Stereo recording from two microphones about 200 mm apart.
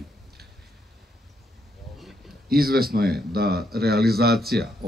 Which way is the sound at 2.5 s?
50° right (ahead or behind).